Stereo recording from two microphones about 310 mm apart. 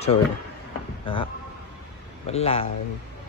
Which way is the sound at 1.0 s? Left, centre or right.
Centre.